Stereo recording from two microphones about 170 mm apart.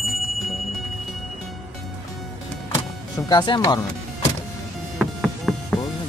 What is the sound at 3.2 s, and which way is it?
Speech, 25° left (ahead or behind).